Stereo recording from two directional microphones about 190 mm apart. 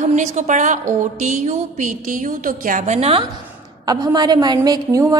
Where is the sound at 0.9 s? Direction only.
40° right (ahead or behind).